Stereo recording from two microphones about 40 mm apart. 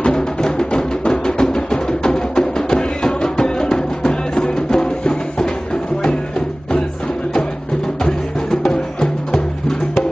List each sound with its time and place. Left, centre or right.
0.0 s music: left
8.0 s music: centre